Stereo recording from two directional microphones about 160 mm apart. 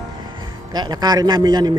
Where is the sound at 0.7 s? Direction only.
25° right (ahead or behind).